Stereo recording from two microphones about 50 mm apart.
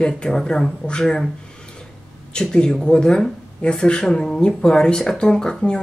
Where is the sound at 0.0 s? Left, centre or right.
Centre.